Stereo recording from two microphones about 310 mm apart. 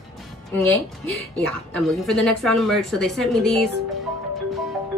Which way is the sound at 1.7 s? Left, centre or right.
Centre.